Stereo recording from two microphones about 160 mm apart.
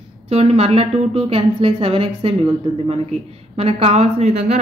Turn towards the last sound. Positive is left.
turn(degrees=-45)  # may be behind; listen again after turning